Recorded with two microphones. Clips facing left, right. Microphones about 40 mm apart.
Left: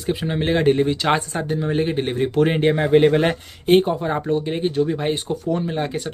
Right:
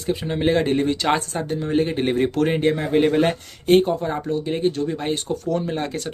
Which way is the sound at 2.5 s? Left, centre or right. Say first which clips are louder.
Left 5 dB; left.